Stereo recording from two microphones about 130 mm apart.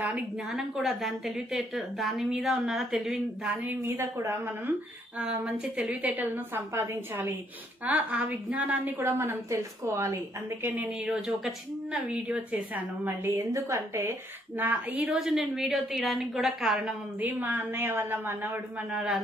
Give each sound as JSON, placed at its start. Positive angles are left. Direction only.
{"t": 0.5, "sound": "a woman's voice", "side_deg": 0}
{"t": 3.6, "sound": "a woman's voice", "side_deg": -20}
{"t": 5.2, "sound": "speech", "side_deg": -5}
{"t": 10.7, "sound": "speech", "side_deg": -10}
{"t": 14.6, "sound": "a woman's voice", "side_deg": -15}
{"t": 17.2, "sound": "speech", "side_deg": -15}